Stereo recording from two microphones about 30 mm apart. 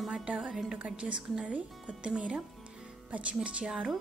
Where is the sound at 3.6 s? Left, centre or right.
Right.